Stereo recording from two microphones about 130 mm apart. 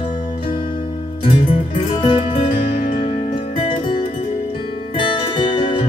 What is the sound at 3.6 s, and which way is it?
Music, 40° left (ahead or behind).